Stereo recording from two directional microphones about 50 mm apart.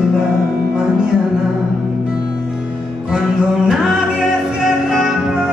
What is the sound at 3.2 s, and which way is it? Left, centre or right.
Music, centre.